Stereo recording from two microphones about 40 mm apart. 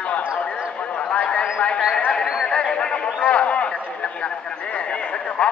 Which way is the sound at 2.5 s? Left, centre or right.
Left.